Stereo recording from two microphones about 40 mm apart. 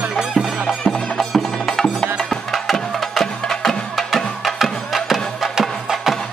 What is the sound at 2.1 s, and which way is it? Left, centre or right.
Music, centre.